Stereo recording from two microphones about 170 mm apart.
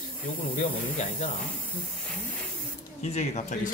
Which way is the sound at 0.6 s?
45° left (ahead or behind).